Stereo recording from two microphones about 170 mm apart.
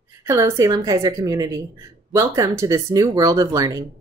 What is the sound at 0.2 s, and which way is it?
A woman's voice, 15° right (ahead or behind).